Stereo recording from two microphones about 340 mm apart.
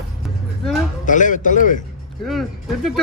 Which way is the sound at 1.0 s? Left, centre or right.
Left.